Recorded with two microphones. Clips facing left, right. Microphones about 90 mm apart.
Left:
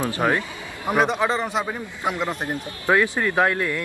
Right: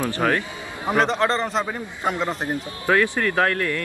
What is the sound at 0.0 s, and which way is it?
Speech, 20° left (ahead or behind).